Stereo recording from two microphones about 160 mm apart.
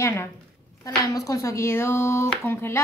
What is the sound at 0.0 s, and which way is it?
A woman's voice, 15° left (ahead or behind).